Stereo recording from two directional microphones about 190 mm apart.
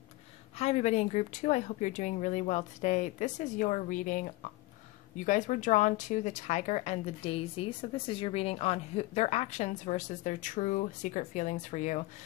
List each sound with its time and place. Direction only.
0.6 s speech: 35° left (ahead or behind)